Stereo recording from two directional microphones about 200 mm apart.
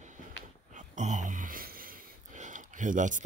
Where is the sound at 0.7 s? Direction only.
35° right (ahead or behind).